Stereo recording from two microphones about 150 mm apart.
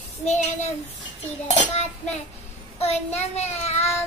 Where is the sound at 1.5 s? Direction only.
50° left (ahead or behind).